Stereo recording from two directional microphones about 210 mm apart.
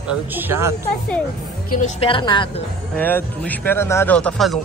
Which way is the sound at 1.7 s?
35° left (ahead or behind).